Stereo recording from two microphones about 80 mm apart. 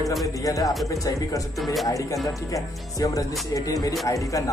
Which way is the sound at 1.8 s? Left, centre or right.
Left.